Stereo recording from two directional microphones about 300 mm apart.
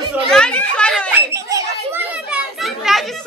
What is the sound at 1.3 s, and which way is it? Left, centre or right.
Children playing, centre.